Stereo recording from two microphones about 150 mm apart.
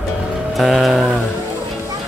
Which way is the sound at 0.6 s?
Centre (ahead or behind).